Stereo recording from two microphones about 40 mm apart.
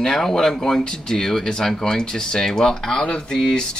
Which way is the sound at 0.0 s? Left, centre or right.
Centre.